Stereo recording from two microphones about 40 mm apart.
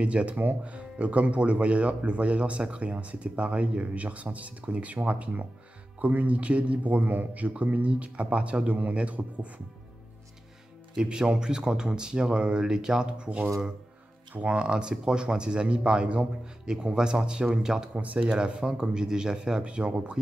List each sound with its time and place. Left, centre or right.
0.0 s speech: right
0.4 s speech: right
0.7 s speech: right
11.0 s speech: right
16.6 s speech: centre
17.9 s speech: right
18.3 s speech: right